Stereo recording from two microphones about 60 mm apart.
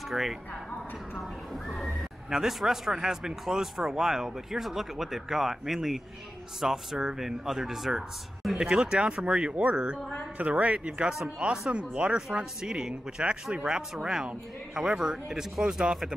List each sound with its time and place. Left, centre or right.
0.1 s a man's voice: centre
1.7 s a man's voice: centre